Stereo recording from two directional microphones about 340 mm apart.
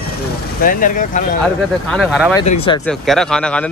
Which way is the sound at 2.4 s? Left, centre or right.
Centre.